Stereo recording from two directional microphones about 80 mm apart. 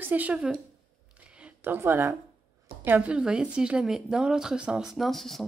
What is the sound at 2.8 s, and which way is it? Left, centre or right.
A woman's voice, right.